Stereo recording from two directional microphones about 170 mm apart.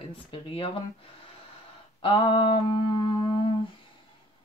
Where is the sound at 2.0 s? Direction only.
30° left (ahead or behind).